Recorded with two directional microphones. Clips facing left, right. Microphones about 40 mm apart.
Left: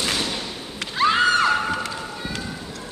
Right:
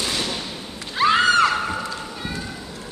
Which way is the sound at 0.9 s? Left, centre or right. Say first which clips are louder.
Right 1 dB; centre.